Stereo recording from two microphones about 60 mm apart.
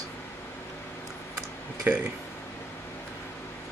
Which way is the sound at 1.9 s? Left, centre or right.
Right.